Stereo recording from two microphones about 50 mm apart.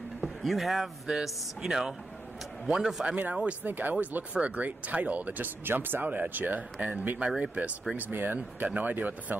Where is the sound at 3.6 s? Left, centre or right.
Right.